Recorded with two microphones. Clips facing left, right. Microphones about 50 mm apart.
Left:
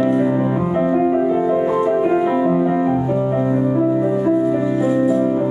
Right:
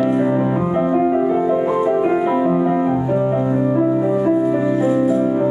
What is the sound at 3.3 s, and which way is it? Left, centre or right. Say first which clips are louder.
Music: even; centre.